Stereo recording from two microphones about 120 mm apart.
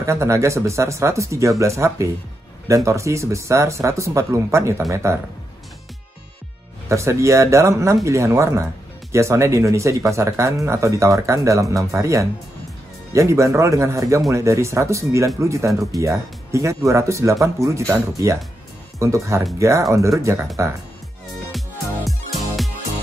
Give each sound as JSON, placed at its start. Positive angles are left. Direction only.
{"t": 0.0, "sound": "speech", "side_deg": -25}
{"t": 6.9, "sound": "speech", "side_deg": -25}
{"t": 21.5, "sound": "music", "side_deg": 0}